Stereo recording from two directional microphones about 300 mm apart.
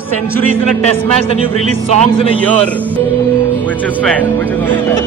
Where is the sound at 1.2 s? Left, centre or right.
Centre.